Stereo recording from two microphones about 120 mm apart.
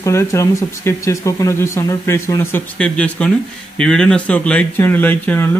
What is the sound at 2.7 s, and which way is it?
Speech, 10° left (ahead or behind).